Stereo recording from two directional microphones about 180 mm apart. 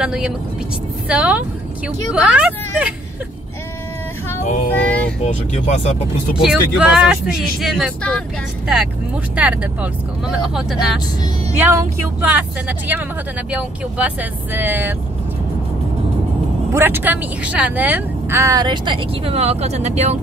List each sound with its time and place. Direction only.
0.0 s speech: 5° right (ahead or behind)
4.7 s speech: 10° left (ahead or behind)
5.2 s speech: 40° left (ahead or behind)
6.3 s speech: 5° right (ahead or behind)
9.3 s speech: 5° right (ahead or behind)
16.7 s speech: 10° right (ahead or behind); by 20.2 s 40° right (ahead or behind)